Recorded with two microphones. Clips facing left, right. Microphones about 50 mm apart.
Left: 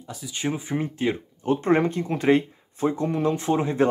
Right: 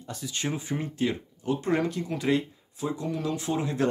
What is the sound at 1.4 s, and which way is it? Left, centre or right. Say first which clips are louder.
Speech: left 6 dB; left.